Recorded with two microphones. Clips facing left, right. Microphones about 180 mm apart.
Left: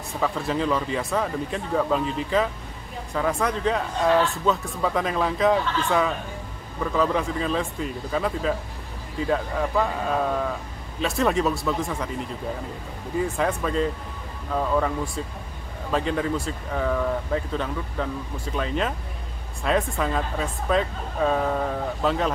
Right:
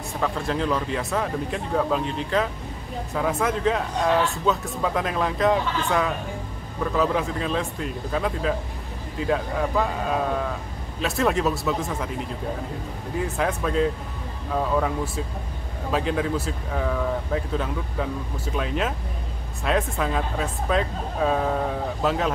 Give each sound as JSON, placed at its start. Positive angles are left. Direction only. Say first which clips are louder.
{"t": 0.1, "sound": "speech", "louder": "left 1 dB", "side_deg": 0}